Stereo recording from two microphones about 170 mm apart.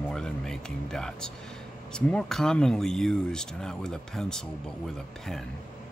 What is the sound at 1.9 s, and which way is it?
Speech, 5° left (ahead or behind).